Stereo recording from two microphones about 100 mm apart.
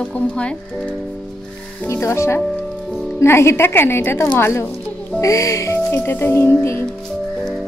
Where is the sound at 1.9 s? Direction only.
25° left (ahead or behind).